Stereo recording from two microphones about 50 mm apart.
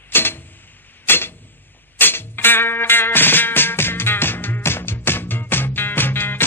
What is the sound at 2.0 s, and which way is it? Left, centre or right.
Music, left.